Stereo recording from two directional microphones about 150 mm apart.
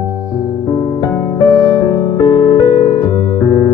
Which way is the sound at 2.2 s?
35° left (ahead or behind).